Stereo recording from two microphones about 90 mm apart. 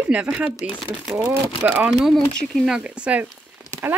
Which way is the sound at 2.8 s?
10° right (ahead or behind).